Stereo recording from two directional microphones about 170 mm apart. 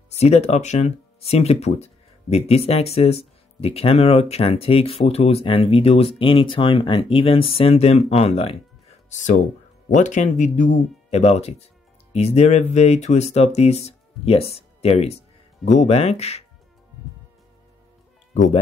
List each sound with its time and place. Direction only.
0.1 s speech: 40° left (ahead or behind)
9.8 s speech: 45° left (ahead or behind)
18.3 s speech: 45° left (ahead or behind)